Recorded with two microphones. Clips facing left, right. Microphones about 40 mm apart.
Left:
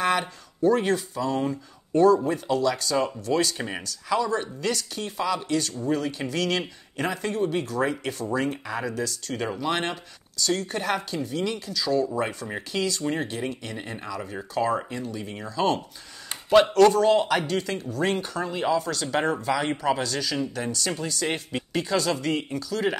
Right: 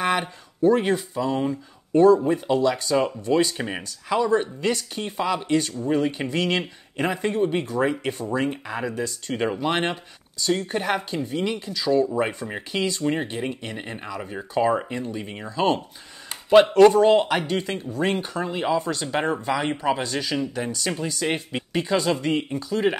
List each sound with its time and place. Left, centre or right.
0.0 s speech: centre